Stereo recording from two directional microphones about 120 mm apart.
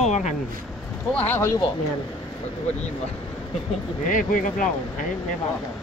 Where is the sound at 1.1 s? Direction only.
15° left (ahead or behind).